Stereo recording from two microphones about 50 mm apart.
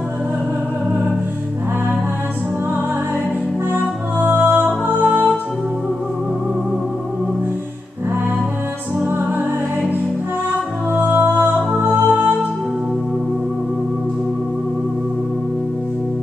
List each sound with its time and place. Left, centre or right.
3.7 s music: right
10.9 s music: right